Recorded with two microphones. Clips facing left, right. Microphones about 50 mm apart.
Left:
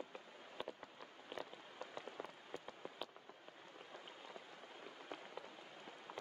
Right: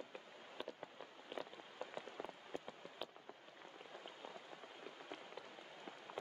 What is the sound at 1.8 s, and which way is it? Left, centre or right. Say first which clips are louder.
Rain on surface: right 3 dB; centre.